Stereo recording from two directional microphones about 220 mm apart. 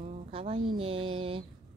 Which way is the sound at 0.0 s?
25° right (ahead or behind).